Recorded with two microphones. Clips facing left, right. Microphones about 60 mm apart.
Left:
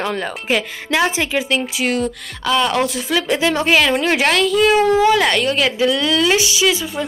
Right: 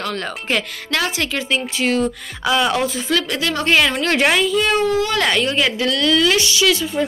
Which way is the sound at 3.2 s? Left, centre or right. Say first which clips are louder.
Left 5 dB; centre.